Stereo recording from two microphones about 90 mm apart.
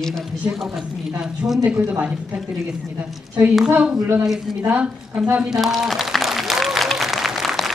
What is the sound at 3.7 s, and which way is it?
A woman's voice, 10° right (ahead or behind).